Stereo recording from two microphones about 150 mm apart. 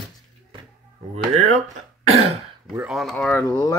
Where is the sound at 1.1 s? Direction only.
45° right (ahead or behind).